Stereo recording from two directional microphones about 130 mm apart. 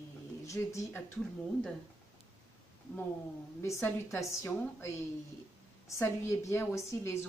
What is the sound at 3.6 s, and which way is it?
A woman's voice, 20° left (ahead or behind).